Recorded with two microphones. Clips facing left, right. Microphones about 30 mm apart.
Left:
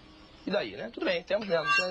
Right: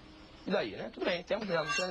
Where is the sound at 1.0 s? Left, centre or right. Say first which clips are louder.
Left 4 dB; left.